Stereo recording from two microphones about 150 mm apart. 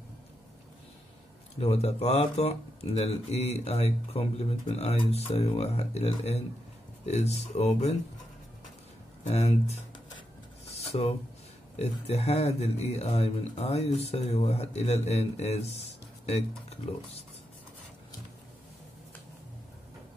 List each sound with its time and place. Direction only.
1.6 s speech: 45° left (ahead or behind)
9.2 s speech: 45° left (ahead or behind)
11.8 s speech: 45° left (ahead or behind)